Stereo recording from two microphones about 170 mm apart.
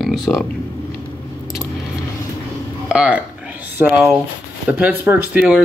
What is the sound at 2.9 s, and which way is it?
Speech, 5° right (ahead or behind).